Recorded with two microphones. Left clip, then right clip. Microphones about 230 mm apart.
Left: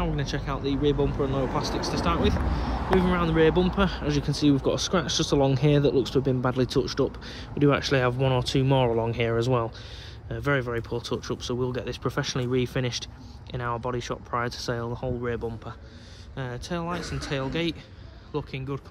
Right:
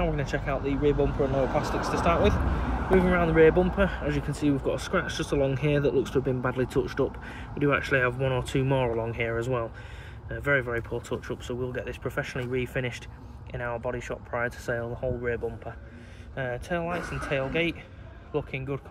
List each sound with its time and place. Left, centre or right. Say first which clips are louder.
0.0 s speech: right 2 dB; centre
16.3 s speech: right 3 dB; centre